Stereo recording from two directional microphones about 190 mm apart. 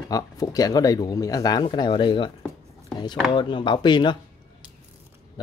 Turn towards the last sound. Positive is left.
turn(degrees=25)  # may be behind; listen again after turning